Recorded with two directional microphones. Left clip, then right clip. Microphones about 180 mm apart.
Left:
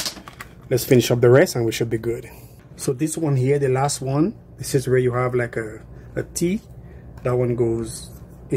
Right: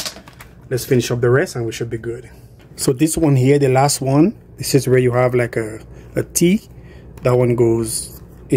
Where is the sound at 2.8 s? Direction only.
55° right (ahead or behind).